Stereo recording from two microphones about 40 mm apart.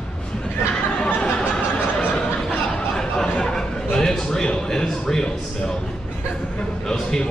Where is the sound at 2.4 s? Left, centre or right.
Centre.